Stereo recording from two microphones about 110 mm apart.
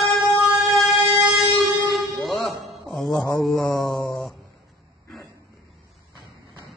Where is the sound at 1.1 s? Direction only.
Centre (ahead or behind).